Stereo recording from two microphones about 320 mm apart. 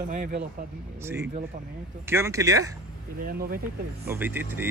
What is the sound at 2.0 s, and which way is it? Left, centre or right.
Speech, centre.